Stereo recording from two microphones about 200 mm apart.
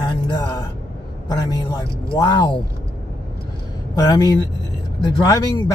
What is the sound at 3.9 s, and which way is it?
Speech, 20° left (ahead or behind).